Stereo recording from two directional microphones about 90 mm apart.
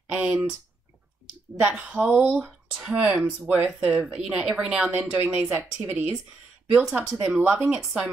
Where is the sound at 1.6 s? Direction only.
20° right (ahead or behind).